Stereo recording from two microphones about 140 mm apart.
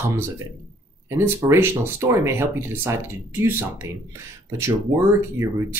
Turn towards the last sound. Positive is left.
turn(degrees=-20)  # may be behind; listen again after turning